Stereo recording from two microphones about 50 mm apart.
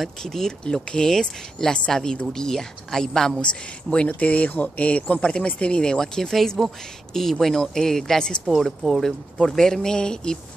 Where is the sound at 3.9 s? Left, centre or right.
Left.